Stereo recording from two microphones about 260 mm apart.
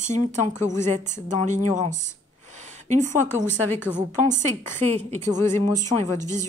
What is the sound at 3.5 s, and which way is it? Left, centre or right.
Speech, centre.